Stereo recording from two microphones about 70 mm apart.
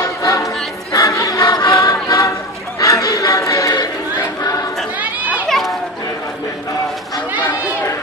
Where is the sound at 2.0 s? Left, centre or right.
Left.